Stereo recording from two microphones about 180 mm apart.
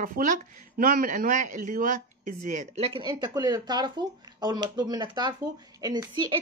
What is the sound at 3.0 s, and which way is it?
Speech, 20° right (ahead or behind).